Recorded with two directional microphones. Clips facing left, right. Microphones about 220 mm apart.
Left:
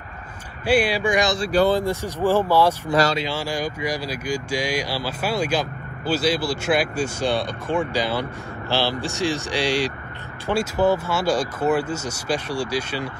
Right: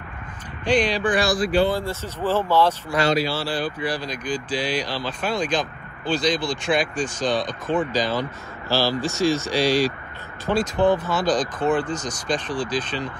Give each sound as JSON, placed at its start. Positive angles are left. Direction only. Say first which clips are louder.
{"t": 0.7, "sound": "speech", "louder": "left 1 dB", "side_deg": 10}
{"t": 1.4, "sound": "speech", "louder": "left 1 dB", "side_deg": 40}
{"t": 1.8, "sound": "speech", "louder": "left 4 dB", "side_deg": 15}